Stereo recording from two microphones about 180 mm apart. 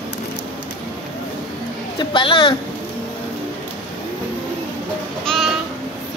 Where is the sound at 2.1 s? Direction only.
30° left (ahead or behind).